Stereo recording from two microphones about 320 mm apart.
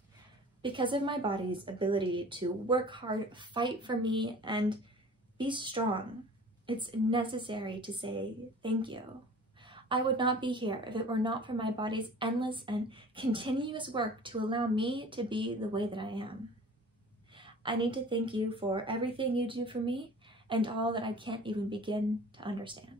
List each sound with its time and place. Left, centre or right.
0.6 s a woman's voice: centre
17.4 s a woman's voice: centre